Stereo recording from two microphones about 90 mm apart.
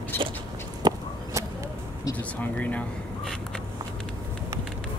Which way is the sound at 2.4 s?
15° left (ahead or behind).